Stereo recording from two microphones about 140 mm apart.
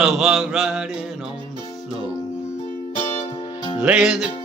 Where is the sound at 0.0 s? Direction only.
Centre (ahead or behind).